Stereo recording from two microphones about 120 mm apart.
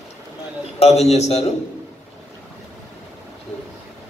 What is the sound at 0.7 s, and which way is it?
Speech, 60° left (ahead or behind).